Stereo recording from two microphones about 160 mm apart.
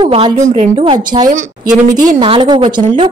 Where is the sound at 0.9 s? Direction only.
25° right (ahead or behind).